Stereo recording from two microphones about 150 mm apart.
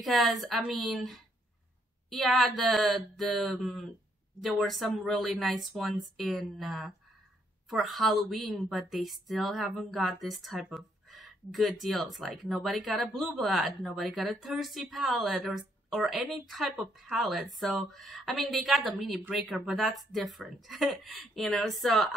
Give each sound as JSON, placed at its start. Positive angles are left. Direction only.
{"t": 0.0, "sound": "speech", "side_deg": 0}